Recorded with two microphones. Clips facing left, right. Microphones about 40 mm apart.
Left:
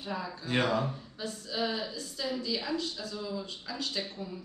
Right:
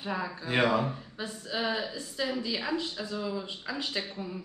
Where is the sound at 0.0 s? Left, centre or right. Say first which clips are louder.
Right 3 dB; right.